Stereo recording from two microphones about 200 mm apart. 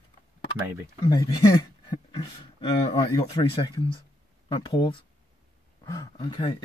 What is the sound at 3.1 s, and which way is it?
Speech, 20° left (ahead or behind).